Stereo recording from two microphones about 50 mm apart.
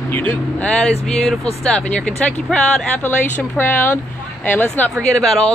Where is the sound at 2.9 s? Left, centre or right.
Left.